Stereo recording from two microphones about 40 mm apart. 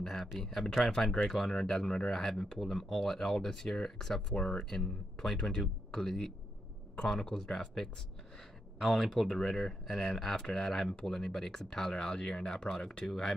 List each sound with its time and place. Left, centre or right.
0.0 s speech: centre
4.4 s speech: left
4.6 s speech: centre
8.9 s speech: centre